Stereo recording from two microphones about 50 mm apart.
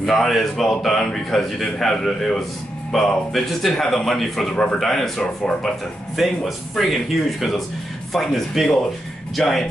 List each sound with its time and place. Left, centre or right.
0.0 s a man's voice: centre
5.2 s a man's voice: centre
6.1 s a man's voice: centre